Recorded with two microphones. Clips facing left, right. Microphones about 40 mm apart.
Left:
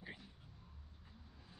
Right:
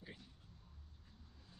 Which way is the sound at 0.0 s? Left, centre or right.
Centre.